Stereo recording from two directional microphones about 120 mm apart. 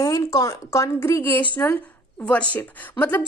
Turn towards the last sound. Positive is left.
turn(degrees=15)  # may be behind; listen again after turning